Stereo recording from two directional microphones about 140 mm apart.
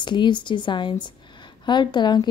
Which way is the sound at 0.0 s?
35° left (ahead or behind).